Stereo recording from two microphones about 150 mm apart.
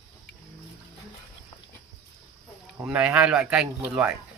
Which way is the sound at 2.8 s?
5° right (ahead or behind).